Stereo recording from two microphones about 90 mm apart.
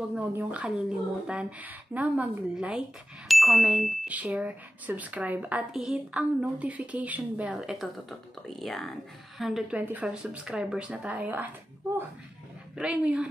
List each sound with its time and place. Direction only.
0.5 s speech: 15° right (ahead or behind)
4.1 s speech: 15° right (ahead or behind)
5.7 s speech: 5° right (ahead or behind)
6.1 s speech: 15° right (ahead or behind)
7.6 s speech: centre (ahead or behind)
9.8 s speech: 15° right (ahead or behind)
11.9 s a sound: 30° right (ahead or behind)
12.7 s speech: 15° right (ahead or behind)